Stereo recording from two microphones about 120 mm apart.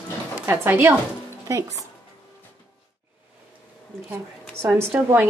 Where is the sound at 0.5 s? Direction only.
15° right (ahead or behind).